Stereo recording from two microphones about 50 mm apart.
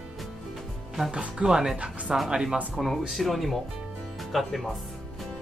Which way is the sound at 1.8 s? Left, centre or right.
Right.